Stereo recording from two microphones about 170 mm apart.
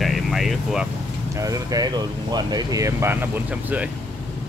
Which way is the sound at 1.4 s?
20° right (ahead or behind).